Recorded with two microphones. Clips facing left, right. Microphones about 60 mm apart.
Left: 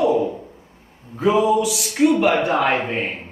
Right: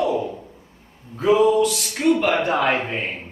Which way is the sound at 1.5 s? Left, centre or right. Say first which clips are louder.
Even; centre.